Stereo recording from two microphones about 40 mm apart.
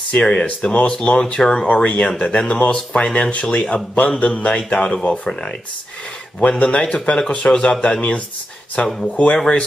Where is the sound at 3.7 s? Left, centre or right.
Left.